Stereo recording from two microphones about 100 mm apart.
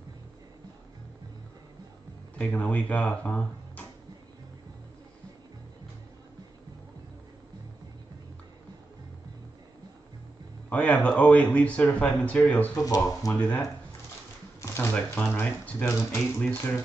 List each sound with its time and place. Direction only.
2.5 s speech: 15° left (ahead or behind)
10.7 s speech: 15° left (ahead or behind)
12.7 s speech: 35° left (ahead or behind)
13.3 s speech: 25° left (ahead or behind)
16.3 s speech: 10° left (ahead or behind)